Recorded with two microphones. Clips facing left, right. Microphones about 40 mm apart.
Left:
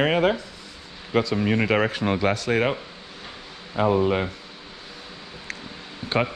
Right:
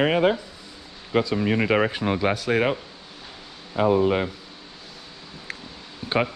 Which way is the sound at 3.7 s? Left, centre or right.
Centre.